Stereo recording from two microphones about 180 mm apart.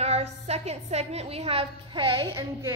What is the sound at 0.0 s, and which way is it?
A woman's voice, 35° right (ahead or behind).